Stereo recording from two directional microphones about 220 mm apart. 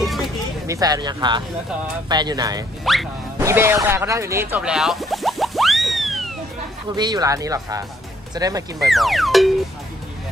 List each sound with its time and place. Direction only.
0.0 s a sound: centre (ahead or behind)
0.7 s speech: 15° right (ahead or behind)
2.8 s speech: centre (ahead or behind)
3.3 s a sound: 10° right (ahead or behind)
7.0 s speech: 20° right (ahead or behind)
8.7 s speech: centre (ahead or behind)